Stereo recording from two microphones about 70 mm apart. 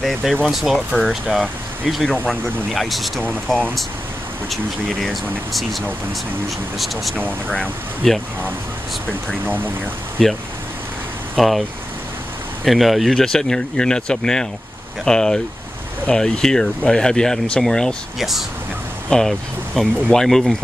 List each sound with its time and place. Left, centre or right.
0.0 s speech: centre
0.7 s speech: centre
1.9 s speech: centre
7.4 s speech: centre
10.2 s speech: centre
12.6 s speech: centre
19.0 s speech: centre